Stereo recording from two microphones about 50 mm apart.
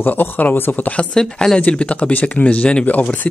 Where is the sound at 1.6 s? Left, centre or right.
Left.